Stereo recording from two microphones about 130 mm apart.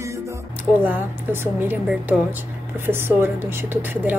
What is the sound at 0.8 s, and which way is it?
Speech, 15° right (ahead or behind).